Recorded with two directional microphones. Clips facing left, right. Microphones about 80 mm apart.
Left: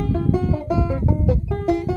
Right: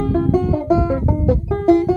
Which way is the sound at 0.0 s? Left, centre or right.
Right.